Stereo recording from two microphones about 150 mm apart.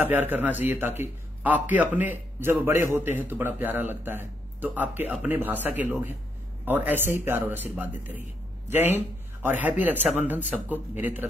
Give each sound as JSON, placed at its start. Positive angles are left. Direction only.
{"t": 0.0, "sound": "a man's voice", "side_deg": -10}